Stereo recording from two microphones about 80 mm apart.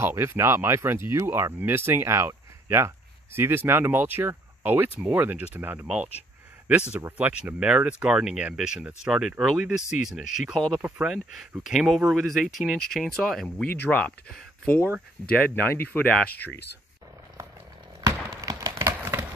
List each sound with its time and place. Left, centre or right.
0.0 s speech: right
7.2 s speech: centre
11.6 s speech: centre
13.7 s speech: left
15.2 s speech: left
18.0 s a sound: right